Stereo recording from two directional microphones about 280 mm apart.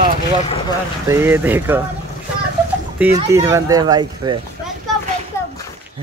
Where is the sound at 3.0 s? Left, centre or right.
Centre.